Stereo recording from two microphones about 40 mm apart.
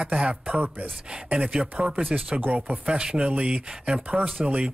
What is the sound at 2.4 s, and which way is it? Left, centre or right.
Speech, right.